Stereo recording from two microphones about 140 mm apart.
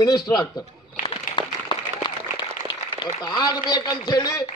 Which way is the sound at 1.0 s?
35° left (ahead or behind).